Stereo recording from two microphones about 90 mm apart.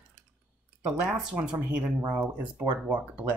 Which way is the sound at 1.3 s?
10° right (ahead or behind).